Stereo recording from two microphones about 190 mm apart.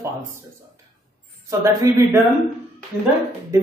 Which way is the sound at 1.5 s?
15° right (ahead or behind).